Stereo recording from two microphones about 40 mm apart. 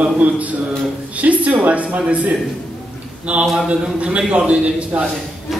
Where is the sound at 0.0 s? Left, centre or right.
Right.